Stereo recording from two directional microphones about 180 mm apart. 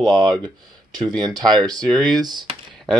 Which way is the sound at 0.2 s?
25° right (ahead or behind).